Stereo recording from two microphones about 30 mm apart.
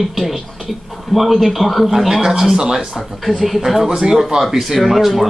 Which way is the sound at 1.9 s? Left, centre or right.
Centre.